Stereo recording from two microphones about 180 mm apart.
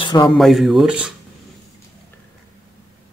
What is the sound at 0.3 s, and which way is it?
Speech, centre (ahead or behind).